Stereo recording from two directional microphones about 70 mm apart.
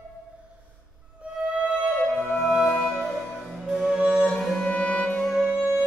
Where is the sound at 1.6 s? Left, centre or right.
Centre.